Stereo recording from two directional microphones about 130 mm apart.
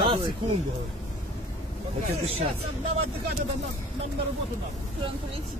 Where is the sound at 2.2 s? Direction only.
50° right (ahead or behind).